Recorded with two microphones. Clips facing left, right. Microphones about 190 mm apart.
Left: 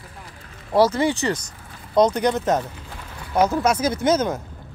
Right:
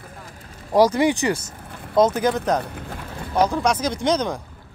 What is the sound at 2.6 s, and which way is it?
Speech, 60° right (ahead or behind).